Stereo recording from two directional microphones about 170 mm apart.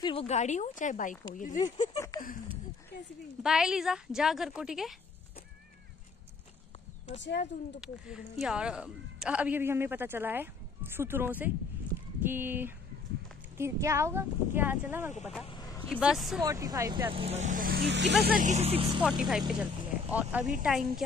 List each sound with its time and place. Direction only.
0.0 s speech: 35° left (ahead or behind); by 1.6 s 50° left (ahead or behind)
2.0 s a sound: 20° left (ahead or behind)
3.4 s a woman's voice: 5° right (ahead or behind)
7.2 s speech: 90° left
7.8 s speech: 5° right (ahead or behind)
15.4 s a sound: 25° left (ahead or behind)
15.9 s a woman's voice: 5° right (ahead or behind)
16.3 s speech: 20° right (ahead or behind)
17.1 s speech: 35° right (ahead or behind); by 18.4 s 75° right (ahead or behind)
18.4 s speech: 40° right (ahead or behind)
18.9 s a woman's voice: 5° right (ahead or behind)